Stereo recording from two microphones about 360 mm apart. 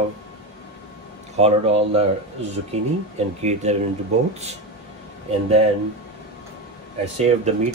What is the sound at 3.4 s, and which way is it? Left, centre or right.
Speech, centre.